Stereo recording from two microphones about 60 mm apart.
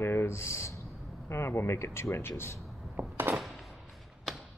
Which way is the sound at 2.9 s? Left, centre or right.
Right.